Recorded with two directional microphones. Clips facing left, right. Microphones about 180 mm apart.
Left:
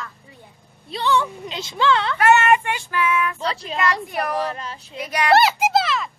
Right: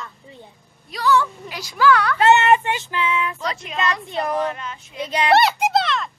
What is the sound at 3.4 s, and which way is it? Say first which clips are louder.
Speech: left 1 dB; 30° left (ahead or behind).